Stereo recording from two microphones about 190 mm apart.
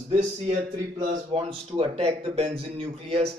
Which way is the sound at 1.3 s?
30° right (ahead or behind).